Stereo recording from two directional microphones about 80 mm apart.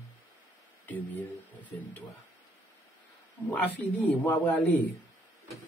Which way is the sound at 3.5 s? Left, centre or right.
Centre.